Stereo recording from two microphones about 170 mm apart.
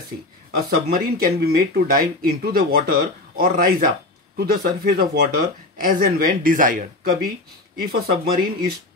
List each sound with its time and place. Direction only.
0.7 s speech: 60° right (ahead or behind)